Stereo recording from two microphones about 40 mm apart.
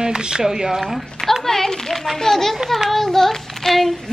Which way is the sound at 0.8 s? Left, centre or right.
Centre.